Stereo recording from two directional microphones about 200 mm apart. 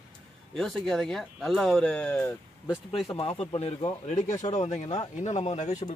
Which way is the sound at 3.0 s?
30° left (ahead or behind).